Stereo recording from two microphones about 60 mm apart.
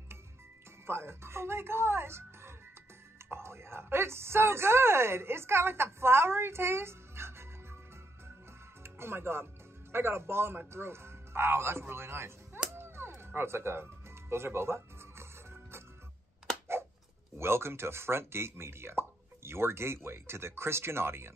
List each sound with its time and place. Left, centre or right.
0.8 s speech: right
8.8 s speech: right
12.7 s music: right
17.4 s speech: right